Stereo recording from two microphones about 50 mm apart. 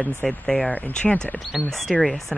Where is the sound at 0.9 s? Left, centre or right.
Centre.